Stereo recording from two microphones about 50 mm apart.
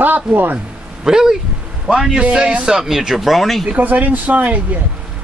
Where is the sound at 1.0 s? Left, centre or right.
Centre.